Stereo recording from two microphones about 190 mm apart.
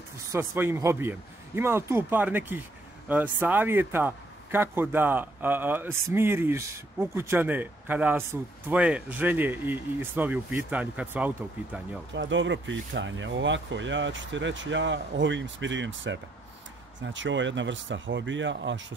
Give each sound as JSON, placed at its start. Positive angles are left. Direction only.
{"t": 0.3, "sound": "speech", "side_deg": -15}
{"t": 12.1, "sound": "speech", "side_deg": -80}